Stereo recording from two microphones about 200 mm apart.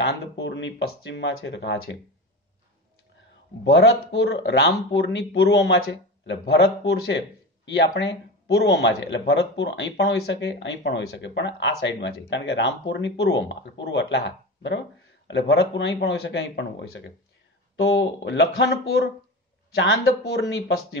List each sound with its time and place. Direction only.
0.0 s speech: 60° left (ahead or behind)
3.6 s speech: 65° left (ahead or behind)